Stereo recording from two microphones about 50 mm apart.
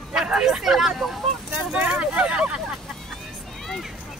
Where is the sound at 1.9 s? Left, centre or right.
Right.